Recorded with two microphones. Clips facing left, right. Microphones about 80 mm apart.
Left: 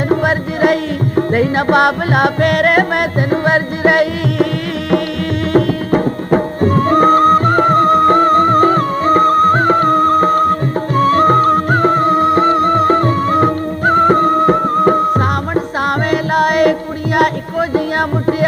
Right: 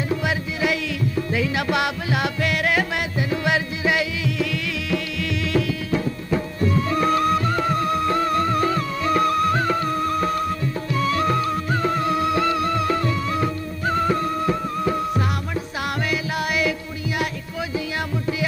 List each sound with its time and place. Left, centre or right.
0.1 s music: left
5.5 s music: left